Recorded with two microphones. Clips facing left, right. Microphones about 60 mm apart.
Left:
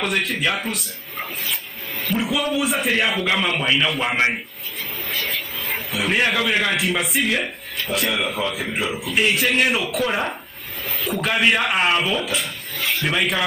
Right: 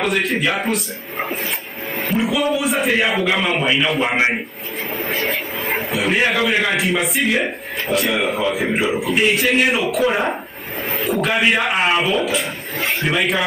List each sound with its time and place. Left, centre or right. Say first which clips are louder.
0.0 s a man's voice: right 3 dB; centre
2.1 s a man's voice: right 3 dB; centre
5.1 s vehicle: right 4 dB; right
5.9 s a man's voice: right 2 dB; centre